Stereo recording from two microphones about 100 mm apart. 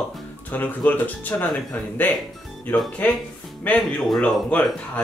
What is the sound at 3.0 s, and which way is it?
Speech, 15° left (ahead or behind).